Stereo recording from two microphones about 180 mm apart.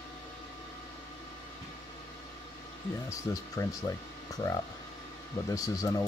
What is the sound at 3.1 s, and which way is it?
Speech, 20° left (ahead or behind).